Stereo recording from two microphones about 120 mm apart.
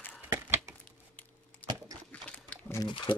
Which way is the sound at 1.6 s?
15° left (ahead or behind).